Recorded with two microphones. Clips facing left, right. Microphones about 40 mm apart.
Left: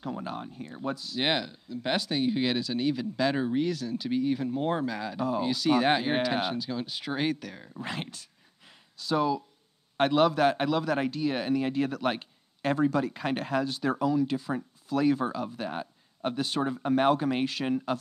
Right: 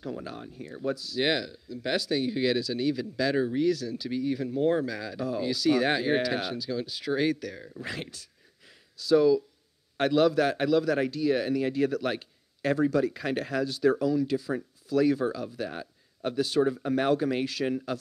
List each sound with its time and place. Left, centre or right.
0.0 s speech: centre